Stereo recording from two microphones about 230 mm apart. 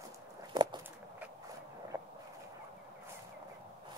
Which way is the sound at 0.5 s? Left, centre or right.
Centre.